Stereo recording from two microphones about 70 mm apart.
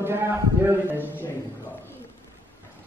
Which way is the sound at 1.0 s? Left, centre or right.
Left.